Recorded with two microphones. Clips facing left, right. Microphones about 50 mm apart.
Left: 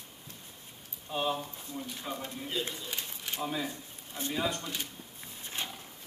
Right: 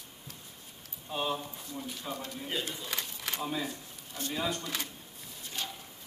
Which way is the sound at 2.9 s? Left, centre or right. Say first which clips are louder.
Right 2 dB; right.